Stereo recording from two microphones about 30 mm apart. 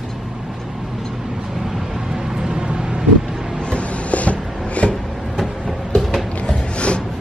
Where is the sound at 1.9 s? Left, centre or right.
Centre; by 3.0 s right.